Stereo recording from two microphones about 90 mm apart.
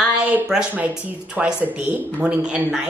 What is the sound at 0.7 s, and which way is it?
Speech, 15° right (ahead or behind).